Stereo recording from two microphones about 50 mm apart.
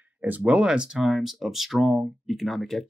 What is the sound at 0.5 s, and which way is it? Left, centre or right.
Speech, centre.